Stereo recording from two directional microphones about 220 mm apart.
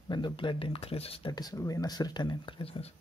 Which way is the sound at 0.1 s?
20° left (ahead or behind).